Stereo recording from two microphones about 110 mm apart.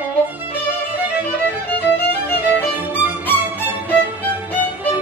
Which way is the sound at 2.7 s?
15° right (ahead or behind).